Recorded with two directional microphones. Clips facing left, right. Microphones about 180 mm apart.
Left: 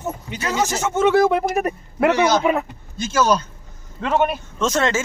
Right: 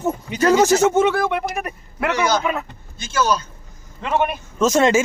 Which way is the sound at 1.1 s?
30° left (ahead or behind).